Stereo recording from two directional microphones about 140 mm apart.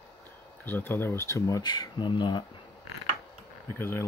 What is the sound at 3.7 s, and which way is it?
Speech, 15° left (ahead or behind).